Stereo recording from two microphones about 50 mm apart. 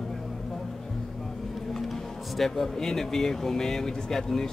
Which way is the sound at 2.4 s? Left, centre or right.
Centre.